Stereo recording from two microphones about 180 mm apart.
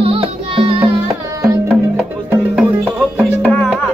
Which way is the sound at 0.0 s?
30° right (ahead or behind).